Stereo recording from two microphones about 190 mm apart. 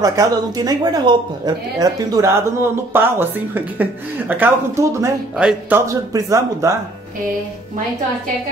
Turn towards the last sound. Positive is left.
turn(degrees=-15)  # may be behind; listen again after turning